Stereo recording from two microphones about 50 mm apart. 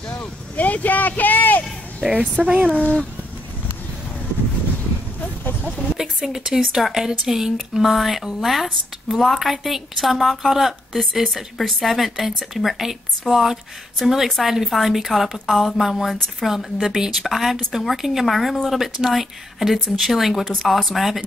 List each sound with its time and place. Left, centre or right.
0.2 s vehicle: left
2.1 s a woman's voice: right
5.7 s a woman's voice: centre